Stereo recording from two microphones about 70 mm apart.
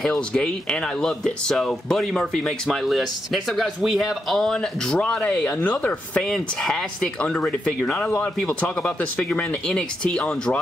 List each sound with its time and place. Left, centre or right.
0.0 s speech: centre
4.4 s speech: centre